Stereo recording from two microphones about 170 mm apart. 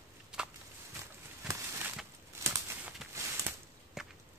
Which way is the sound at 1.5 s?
10° right (ahead or behind).